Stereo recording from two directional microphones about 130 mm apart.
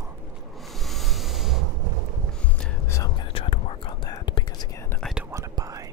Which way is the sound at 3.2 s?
40° left (ahead or behind).